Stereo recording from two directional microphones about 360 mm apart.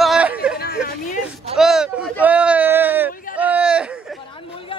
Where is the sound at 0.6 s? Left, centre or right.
Left.